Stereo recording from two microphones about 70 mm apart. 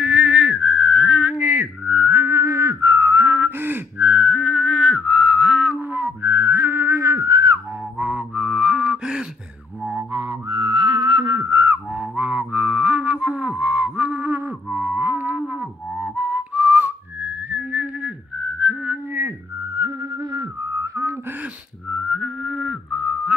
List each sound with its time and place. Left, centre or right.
0.0 s whistling: centre; by 7.5 s right
8.0 s music: right
10.1 s music: right
11.3 s whistling: right
11.9 s music: right
16.2 s whistling: centre
20.8 s a sound: right
21.9 s music: centre